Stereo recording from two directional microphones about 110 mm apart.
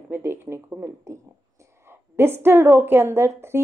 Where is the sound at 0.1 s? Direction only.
20° right (ahead or behind).